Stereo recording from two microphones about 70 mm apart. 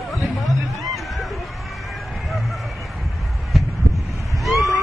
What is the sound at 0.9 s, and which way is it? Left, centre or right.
Music, centre.